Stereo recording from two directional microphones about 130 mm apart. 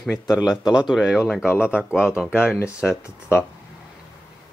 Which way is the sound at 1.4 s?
15° left (ahead or behind).